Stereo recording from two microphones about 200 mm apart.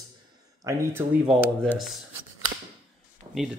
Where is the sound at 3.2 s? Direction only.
25° right (ahead or behind).